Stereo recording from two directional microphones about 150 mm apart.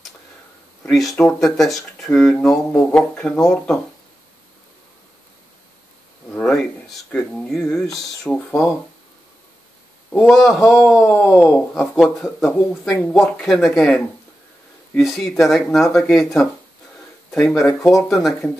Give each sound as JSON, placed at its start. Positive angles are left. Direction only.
{"t": 0.8, "sound": "speech", "side_deg": 0}
{"t": 6.3, "sound": "a sound", "side_deg": 5}
{"t": 7.1, "sound": "speech", "side_deg": 5}
{"t": 7.8, "sound": "speech", "side_deg": 20}
{"t": 8.3, "sound": "speech", "side_deg": 5}
{"t": 10.1, "sound": "speech", "side_deg": 0}
{"t": 11.0, "sound": "speech", "side_deg": 15}
{"t": 11.3, "sound": "speech", "side_deg": 0}
{"t": 18.0, "sound": "speech", "side_deg": 0}